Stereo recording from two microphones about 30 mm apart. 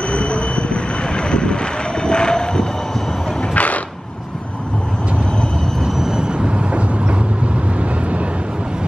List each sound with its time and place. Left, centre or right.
0.1 s vehicle: left
3.5 s a sound: left
6.1 s vehicle: right